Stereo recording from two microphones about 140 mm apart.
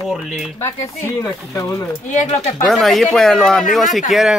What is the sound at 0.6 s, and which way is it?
Speech, 25° left (ahead or behind).